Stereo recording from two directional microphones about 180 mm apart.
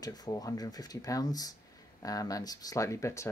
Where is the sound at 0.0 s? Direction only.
20° left (ahead or behind).